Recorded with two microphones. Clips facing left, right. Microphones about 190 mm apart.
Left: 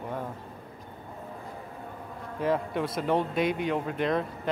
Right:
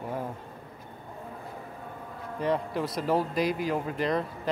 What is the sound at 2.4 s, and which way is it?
Speech, centre (ahead or behind).